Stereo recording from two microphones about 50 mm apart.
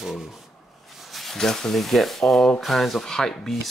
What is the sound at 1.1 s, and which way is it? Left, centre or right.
Speech, centre.